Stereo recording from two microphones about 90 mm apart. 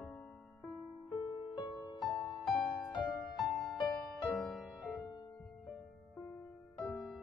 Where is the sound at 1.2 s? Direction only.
50° left (ahead or behind).